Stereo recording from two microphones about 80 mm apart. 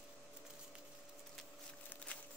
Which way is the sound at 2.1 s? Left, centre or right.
Centre.